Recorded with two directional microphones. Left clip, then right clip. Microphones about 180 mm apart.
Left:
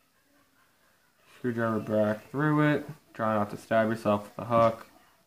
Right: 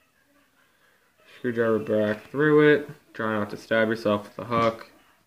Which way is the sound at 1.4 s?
45° left (ahead or behind).